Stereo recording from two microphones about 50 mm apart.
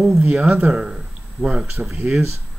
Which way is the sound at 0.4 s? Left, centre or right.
Right.